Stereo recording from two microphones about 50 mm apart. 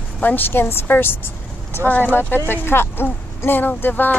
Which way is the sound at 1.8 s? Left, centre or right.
Left.